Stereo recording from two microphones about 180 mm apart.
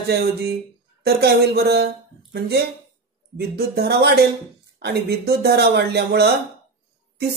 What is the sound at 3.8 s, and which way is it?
Speech, 65° right (ahead or behind).